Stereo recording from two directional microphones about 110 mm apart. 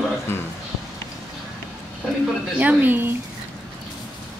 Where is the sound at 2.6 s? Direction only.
15° right (ahead or behind).